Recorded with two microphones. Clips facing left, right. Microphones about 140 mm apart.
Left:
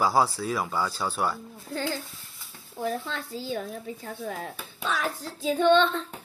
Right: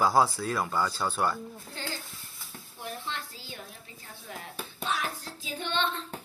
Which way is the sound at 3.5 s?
65° left (ahead or behind).